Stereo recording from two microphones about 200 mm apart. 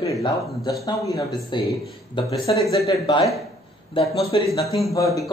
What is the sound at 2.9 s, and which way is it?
A man's voice, 20° left (ahead or behind).